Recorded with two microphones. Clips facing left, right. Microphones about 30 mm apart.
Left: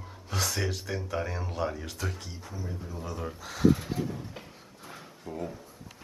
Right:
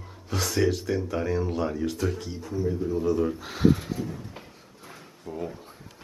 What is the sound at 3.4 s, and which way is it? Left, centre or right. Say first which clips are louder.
Speech: left 1 dB; right.